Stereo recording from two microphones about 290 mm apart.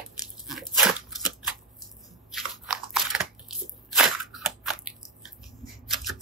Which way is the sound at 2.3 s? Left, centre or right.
Centre.